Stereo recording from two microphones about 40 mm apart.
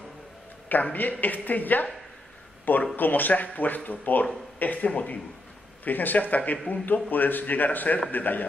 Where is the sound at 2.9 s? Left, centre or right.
Left.